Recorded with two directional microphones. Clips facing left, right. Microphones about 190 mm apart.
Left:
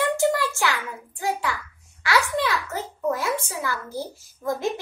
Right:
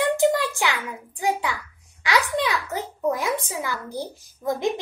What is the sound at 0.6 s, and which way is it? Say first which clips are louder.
A child's voice: even; 15° right (ahead or behind).